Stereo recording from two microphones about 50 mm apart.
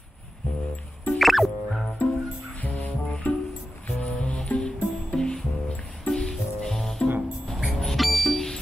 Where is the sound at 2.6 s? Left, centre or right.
Left.